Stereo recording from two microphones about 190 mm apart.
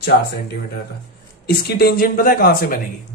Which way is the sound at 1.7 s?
55° left (ahead or behind).